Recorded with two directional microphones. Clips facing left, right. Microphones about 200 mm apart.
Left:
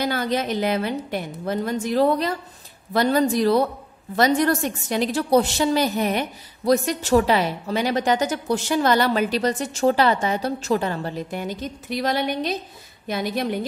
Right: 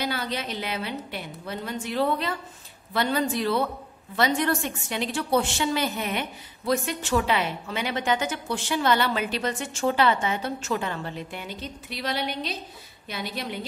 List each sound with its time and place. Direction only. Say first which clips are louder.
0.0 s a woman's voice: left 6 dB; 45° left (ahead or behind)